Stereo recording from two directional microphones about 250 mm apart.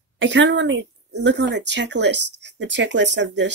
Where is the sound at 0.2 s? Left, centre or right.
Right.